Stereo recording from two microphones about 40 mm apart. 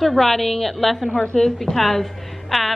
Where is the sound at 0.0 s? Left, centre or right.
Centre.